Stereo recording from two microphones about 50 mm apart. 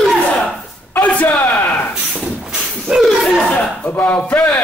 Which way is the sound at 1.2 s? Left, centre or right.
Left.